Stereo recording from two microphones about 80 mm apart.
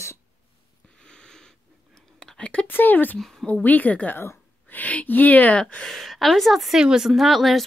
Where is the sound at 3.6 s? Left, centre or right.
Left.